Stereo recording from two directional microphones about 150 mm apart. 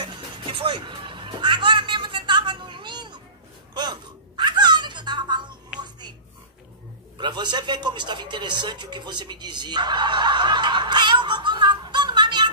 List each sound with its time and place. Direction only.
0.0 s music: 35° right (ahead or behind)
3.7 s wail: 30° right (ahead or behind)
7.2 s speech: 30° right (ahead or behind)